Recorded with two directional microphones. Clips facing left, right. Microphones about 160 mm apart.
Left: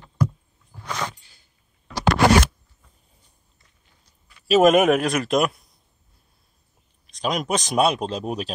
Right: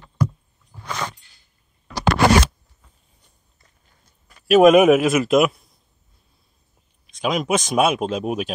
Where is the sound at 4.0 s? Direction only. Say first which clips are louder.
Right 4 dB; 45° right (ahead or behind).